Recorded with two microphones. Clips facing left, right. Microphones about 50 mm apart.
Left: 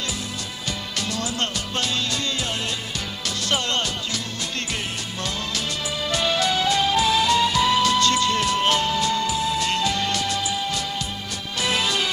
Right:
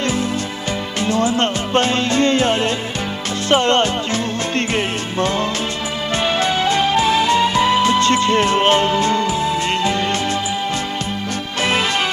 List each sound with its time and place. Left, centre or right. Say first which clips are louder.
1.0 s music: right 11 dB; right